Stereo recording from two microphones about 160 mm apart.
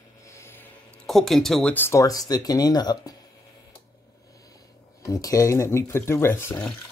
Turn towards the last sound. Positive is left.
turn(degrees=15)  # may be behind; listen again after turning